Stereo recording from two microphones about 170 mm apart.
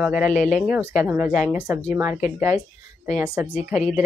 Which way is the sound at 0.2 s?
45° left (ahead or behind).